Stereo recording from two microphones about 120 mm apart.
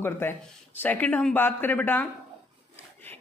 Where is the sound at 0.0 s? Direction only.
15° left (ahead or behind).